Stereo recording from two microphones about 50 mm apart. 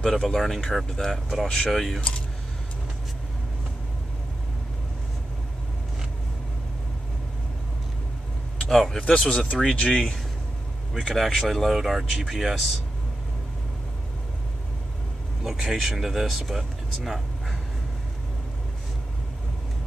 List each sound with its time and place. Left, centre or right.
0.0 s speech: centre
1.1 s speech: centre
2.0 s speech: left
8.6 s speech: centre
9.0 s speech: left
11.1 s speech: centre
15.4 s speech: centre